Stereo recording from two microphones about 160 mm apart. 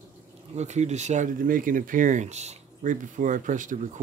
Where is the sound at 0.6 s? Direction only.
45° right (ahead or behind).